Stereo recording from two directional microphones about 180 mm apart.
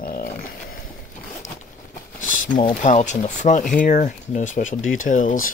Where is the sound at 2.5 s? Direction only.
45° left (ahead or behind).